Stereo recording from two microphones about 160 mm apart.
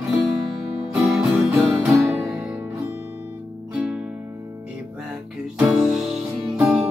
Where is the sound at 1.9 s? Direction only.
15° right (ahead or behind).